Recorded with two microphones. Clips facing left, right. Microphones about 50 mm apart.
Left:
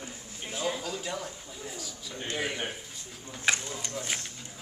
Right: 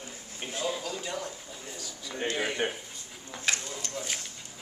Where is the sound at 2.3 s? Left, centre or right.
Centre.